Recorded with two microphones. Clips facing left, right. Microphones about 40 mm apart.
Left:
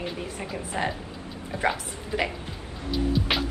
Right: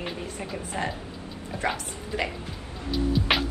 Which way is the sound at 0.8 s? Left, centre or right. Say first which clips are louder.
Left 2 dB; left.